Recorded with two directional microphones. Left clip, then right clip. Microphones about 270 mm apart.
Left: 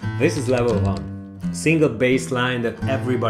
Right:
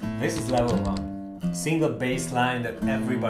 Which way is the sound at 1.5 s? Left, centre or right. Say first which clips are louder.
Left 8 dB; left.